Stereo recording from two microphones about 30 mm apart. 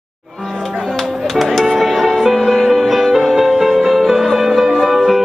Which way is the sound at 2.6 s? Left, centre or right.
Centre.